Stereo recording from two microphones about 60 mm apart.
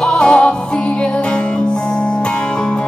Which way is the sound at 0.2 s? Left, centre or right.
Centre.